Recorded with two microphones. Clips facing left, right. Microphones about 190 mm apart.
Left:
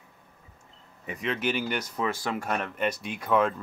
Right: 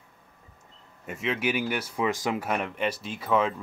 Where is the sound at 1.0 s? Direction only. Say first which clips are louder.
Right 1 dB; 5° right (ahead or behind).